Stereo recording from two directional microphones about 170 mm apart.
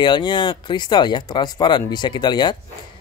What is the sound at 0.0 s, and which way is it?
Speech, 25° left (ahead or behind).